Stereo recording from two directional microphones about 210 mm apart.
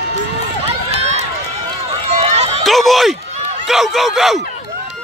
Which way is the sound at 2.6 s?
Centre (ahead or behind).